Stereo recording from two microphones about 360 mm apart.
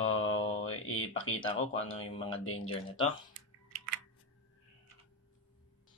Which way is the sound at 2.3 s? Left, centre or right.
Left.